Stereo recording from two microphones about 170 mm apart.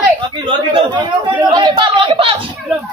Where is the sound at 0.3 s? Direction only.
30° right (ahead or behind).